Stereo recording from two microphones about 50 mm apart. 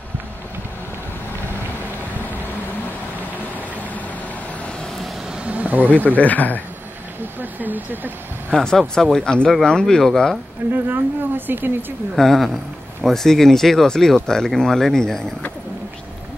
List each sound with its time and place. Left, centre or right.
5.4 s a sound: right
5.9 s speech: left
7.3 s speech: right
8.5 s speech: centre
10.7 s speech: right
12.2 s a man's voice: centre